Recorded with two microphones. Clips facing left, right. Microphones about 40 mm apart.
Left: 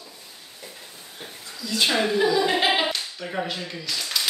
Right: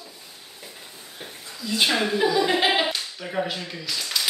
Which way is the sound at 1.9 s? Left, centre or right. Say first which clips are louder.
Left 2 dB; centre.